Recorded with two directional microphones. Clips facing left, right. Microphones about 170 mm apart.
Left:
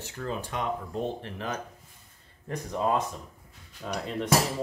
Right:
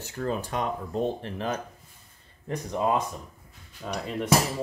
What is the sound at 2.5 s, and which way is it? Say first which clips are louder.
Speech: right 1 dB; 15° right (ahead or behind).